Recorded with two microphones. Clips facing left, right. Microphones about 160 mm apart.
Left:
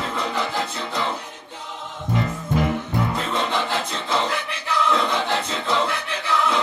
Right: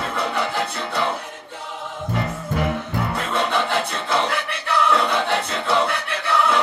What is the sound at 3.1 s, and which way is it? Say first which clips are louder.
Music: right 2 dB; 60° right (ahead or behind).